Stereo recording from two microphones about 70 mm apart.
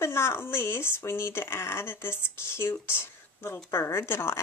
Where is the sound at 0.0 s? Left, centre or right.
Left.